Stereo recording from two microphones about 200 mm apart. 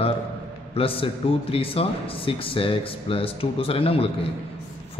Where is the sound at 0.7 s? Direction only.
25° left (ahead or behind).